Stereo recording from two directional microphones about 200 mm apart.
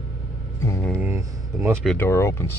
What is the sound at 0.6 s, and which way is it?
Speech, 15° left (ahead or behind).